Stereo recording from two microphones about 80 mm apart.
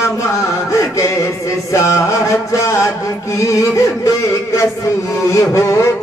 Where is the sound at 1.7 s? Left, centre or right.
Left.